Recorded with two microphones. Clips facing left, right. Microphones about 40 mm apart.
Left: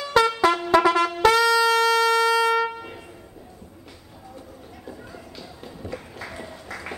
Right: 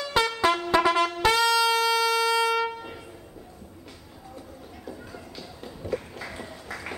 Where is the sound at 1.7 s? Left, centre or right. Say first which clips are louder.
Left 4 dB; left.